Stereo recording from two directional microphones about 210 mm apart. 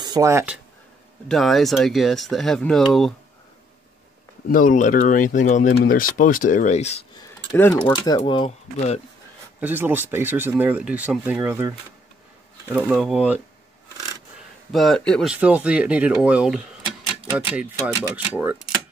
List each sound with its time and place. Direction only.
0.0 s speech: 15° right (ahead or behind)
1.3 s speech: centre (ahead or behind)
4.5 s speech: 40° left (ahead or behind)
7.2 s keys jangling: 10° left (ahead or behind)
7.8 s speech: 20° left (ahead or behind)
9.6 s speech: 10° right (ahead or behind)
14.7 s speech: centre (ahead or behind)